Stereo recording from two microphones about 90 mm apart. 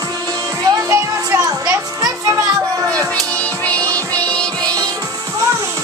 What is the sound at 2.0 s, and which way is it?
Children playing, 45° right (ahead or behind).